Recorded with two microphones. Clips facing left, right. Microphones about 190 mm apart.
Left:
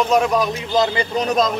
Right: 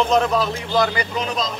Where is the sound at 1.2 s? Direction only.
45° left (ahead or behind).